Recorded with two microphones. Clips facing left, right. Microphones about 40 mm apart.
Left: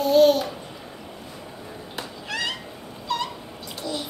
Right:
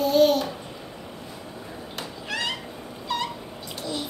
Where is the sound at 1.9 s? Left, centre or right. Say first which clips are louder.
Even; centre.